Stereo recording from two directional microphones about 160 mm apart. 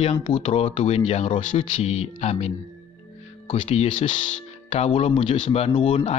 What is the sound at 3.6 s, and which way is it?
Speech, 45° left (ahead or behind).